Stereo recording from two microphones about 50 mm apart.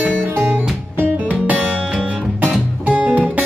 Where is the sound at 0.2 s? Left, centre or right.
Right.